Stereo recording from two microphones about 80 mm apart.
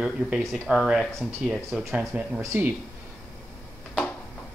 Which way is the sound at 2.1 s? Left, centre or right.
Centre.